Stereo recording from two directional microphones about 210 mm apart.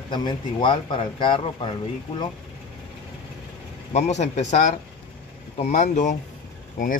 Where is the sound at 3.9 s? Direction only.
35° left (ahead or behind).